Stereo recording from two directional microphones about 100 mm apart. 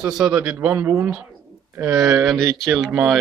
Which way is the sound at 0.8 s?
30° right (ahead or behind).